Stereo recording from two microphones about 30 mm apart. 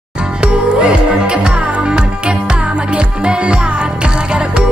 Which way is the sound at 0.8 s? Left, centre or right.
Right.